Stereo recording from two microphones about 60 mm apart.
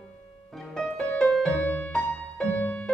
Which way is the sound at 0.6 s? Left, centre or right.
Centre.